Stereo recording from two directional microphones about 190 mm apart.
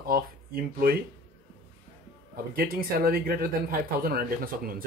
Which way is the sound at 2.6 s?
50° right (ahead or behind).